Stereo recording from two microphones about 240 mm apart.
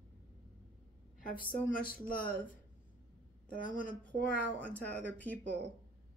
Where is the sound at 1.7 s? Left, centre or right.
Left.